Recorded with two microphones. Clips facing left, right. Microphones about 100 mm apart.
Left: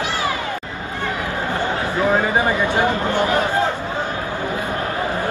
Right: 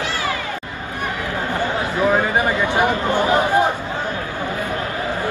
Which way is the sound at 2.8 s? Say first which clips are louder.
Right 1 dB; 15° right (ahead or behind).